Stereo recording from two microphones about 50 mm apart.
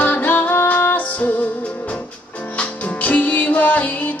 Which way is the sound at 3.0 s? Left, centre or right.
Left.